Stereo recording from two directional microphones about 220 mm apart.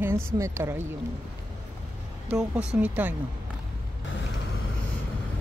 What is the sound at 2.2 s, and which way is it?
Speech, 5° right (ahead or behind).